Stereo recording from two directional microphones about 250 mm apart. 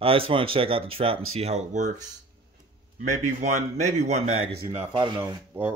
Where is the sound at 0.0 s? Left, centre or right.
Right.